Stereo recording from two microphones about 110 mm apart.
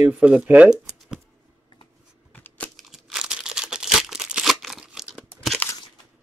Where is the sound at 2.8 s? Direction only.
Centre (ahead or behind).